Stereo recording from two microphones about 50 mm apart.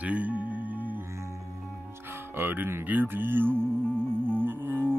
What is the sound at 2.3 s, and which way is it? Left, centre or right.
Speech, right.